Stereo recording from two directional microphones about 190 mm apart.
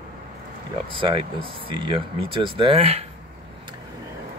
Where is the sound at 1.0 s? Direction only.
25° right (ahead or behind).